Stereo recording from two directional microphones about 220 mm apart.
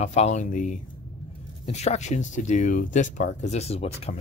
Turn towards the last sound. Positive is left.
turn(degrees=30)  # may be behind; listen again after turning